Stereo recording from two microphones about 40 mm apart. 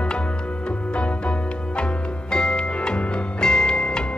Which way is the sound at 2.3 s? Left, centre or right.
Left.